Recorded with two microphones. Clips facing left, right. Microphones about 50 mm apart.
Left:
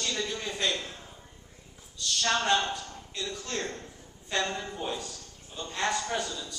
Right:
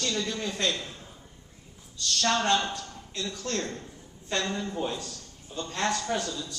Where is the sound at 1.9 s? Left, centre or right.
Centre.